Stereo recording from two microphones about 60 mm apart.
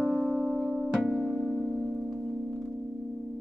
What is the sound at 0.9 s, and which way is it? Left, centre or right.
Music, centre.